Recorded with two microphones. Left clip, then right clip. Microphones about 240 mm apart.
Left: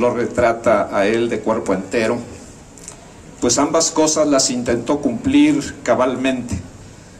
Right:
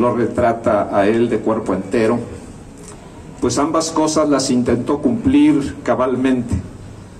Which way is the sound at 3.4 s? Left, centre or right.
Left.